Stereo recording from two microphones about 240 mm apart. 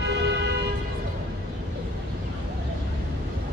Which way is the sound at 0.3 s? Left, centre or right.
Right.